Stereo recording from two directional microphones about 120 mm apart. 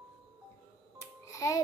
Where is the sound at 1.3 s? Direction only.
25° left (ahead or behind).